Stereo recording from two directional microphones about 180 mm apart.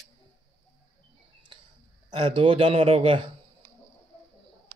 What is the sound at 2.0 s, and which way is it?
A man's voice, 30° right (ahead or behind).